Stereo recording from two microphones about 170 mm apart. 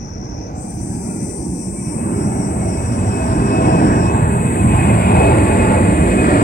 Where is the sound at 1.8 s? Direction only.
75° left (ahead or behind).